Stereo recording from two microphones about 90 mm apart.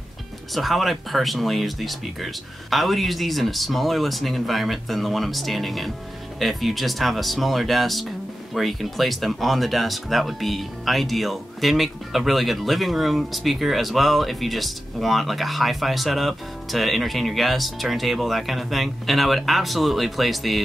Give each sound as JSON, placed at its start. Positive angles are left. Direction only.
{"t": 0.6, "sound": "speech", "side_deg": 0}